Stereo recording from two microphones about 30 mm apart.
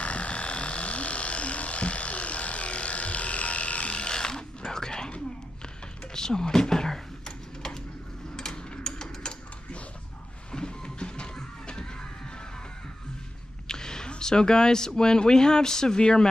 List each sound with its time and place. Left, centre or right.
0.0 s electric shaver: left
4.1 s mechanisms: left
6.1 s typing: left
8.4 s a sound: centre
10.5 s music: left
13.7 s a sound: left
14.1 s speech: left